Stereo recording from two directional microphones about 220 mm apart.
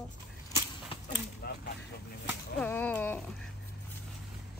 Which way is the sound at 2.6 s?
5° left (ahead or behind).